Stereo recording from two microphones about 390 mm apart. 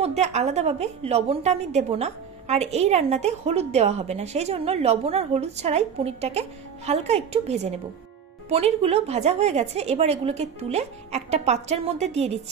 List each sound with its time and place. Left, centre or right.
0.0 s a woman's voice: centre